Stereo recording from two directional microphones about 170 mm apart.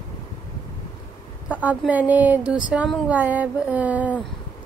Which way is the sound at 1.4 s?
10° right (ahead or behind).